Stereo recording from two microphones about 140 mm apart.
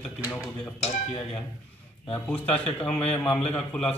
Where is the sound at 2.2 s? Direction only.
10° left (ahead or behind).